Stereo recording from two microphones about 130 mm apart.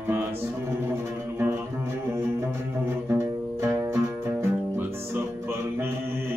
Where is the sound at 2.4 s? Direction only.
20° right (ahead or behind).